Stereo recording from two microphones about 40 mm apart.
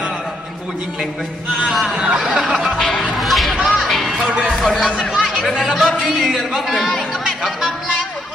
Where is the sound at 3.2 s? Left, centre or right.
Centre.